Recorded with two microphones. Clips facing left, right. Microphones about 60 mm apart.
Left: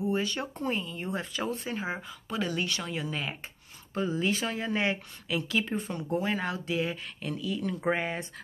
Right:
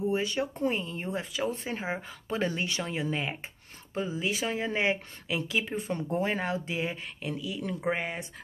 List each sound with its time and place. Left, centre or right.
0.1 s speech: centre
1.5 s speech: right
5.9 s speech: right; by 8.2 s centre